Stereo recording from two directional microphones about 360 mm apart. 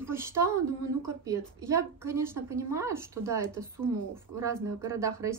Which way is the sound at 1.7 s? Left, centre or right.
Centre.